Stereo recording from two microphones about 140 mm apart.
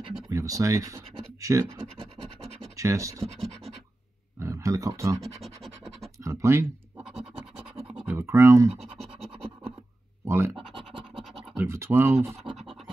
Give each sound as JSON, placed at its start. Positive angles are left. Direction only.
{"t": 0.3, "sound": "speech", "side_deg": -25}
{"t": 2.7, "sound": "speech", "side_deg": -25}
{"t": 4.4, "sound": "a sound", "side_deg": -20}
{"t": 5.2, "sound": "scratch", "side_deg": 0}
{"t": 6.2, "sound": "speech", "side_deg": -20}
{"t": 7.0, "sound": "scratch", "side_deg": -5}
{"t": 7.3, "sound": "scratch", "side_deg": -40}
{"t": 8.1, "sound": "speech", "side_deg": -15}
{"t": 8.8, "sound": "music", "side_deg": 0}
{"t": 10.2, "sound": "scratch", "side_deg": -20}
{"t": 11.5, "sound": "speech", "side_deg": -20}